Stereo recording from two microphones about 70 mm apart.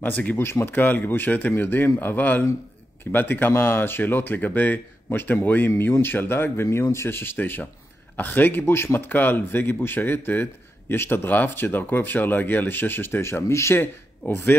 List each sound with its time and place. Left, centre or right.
0.0 s a man's voice: left
14.2 s a man's voice: left